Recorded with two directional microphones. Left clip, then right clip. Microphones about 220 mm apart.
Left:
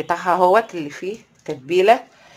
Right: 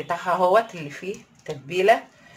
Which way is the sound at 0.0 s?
50° left (ahead or behind).